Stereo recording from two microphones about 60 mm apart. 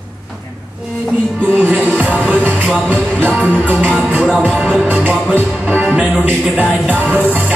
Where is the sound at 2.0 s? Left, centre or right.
Right.